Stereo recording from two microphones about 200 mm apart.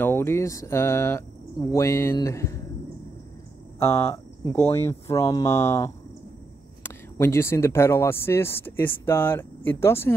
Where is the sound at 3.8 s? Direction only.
30° left (ahead or behind).